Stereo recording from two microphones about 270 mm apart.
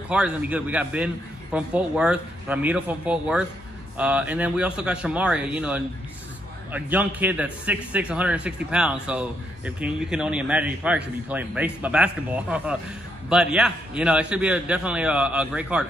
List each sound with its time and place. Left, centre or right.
0.1 s a man's voice: centre